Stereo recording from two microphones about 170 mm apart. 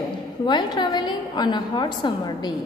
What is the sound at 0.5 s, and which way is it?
A woman's voice, 25° left (ahead or behind).